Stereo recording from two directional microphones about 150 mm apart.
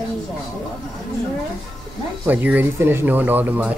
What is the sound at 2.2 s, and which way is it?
Speech, 10° right (ahead or behind).